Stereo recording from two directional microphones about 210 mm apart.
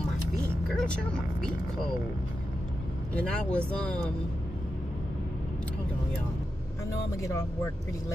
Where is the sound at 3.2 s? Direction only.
5° left (ahead or behind).